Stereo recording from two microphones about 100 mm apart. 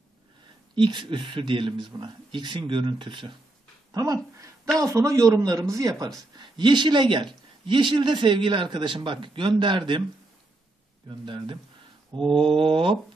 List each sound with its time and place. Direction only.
0.7 s speech: 50° right (ahead or behind)
3.9 s a sound: 35° right (ahead or behind)
4.7 s speech: 35° right (ahead or behind)
6.3 s a man's voice: 50° right (ahead or behind)
11.2 s speech: 55° right (ahead or behind)